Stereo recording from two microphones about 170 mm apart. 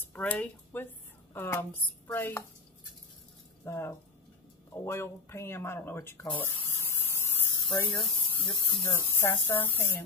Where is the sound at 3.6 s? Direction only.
15° left (ahead or behind).